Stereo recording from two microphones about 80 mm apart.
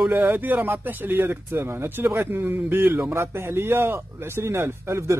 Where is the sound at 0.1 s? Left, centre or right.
Right.